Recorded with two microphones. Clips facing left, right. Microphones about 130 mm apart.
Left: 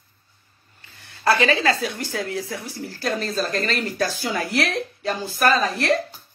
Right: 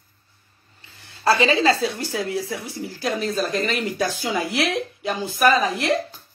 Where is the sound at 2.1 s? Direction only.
20° right (ahead or behind).